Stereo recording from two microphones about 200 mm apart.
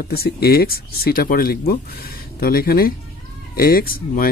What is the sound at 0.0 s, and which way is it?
Speech, 50° left (ahead or behind).